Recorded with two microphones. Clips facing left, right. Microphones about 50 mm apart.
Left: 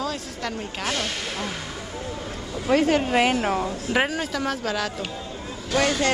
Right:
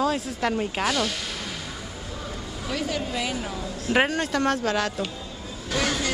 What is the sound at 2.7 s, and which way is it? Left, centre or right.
Speech, left.